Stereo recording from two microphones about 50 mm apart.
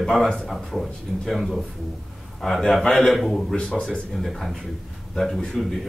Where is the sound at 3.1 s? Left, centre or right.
Centre.